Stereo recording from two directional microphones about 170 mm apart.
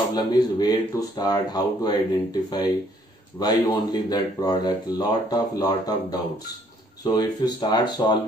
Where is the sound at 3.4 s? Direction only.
25° left (ahead or behind).